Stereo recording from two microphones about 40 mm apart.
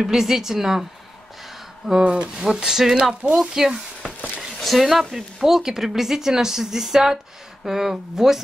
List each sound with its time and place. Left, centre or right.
0.0 s speech: centre
2.0 s speech: right
2.4 s speech: centre